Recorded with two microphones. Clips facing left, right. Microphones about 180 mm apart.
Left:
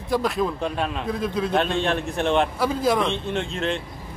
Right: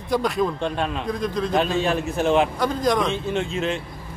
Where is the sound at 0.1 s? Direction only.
Centre (ahead or behind).